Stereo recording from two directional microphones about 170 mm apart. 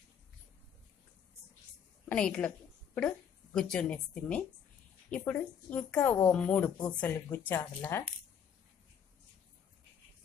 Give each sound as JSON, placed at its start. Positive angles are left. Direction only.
{"t": 2.0, "sound": "a woman's voice", "side_deg": 5}